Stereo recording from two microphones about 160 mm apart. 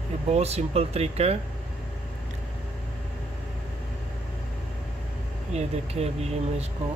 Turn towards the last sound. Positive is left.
turn(degrees=-40)  # may be behind; listen again after turning